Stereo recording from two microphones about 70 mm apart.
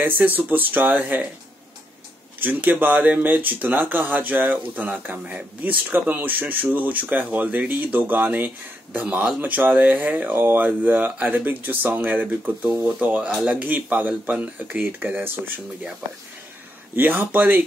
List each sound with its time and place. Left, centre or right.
0.0 s speech: right
2.4 s speech: right
16.9 s speech: right